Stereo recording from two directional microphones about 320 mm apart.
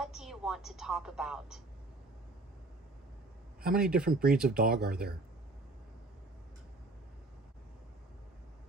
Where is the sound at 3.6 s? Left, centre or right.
Right.